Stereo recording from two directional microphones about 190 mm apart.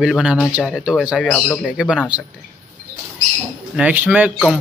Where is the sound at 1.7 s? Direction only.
5° right (ahead or behind).